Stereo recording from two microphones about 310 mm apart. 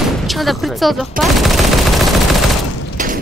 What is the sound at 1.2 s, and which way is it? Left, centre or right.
Machine gun, centre.